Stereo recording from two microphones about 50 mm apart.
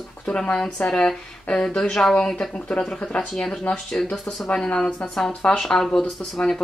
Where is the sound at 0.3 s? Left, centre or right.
Centre.